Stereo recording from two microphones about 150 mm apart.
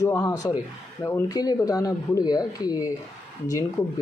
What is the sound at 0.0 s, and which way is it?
Speech, 15° left (ahead or behind).